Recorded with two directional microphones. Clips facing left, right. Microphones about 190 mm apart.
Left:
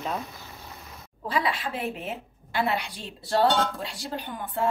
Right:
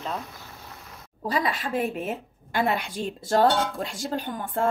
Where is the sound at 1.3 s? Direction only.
45° right (ahead or behind).